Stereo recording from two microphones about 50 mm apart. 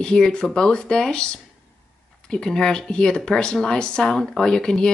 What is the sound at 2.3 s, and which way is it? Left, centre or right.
Speech, centre.